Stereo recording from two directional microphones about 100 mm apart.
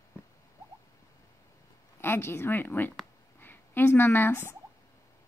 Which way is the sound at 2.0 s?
25° left (ahead or behind).